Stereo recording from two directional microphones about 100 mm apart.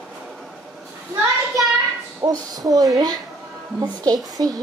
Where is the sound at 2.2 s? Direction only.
40° right (ahead or behind).